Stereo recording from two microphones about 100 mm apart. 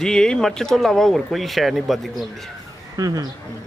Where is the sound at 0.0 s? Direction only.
5° left (ahead or behind).